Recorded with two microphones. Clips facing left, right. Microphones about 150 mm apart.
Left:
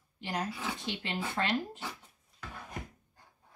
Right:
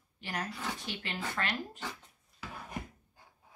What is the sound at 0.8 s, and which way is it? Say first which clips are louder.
Speech: left 3 dB; 20° left (ahead or behind).